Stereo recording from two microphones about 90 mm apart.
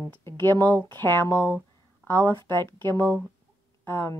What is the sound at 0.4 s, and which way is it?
Speech, 25° left (ahead or behind).